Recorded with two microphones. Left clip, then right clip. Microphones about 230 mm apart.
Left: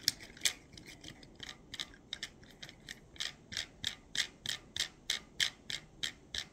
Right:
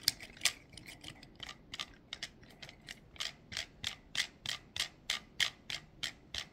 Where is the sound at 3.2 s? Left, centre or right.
Right.